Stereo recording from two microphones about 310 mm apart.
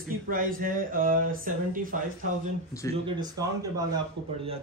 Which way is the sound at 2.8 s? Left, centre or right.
Centre.